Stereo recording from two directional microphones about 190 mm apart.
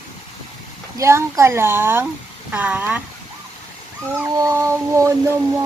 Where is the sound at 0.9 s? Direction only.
15° right (ahead or behind).